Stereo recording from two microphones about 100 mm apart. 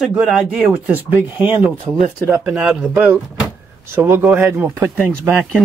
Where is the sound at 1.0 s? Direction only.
20° right (ahead or behind).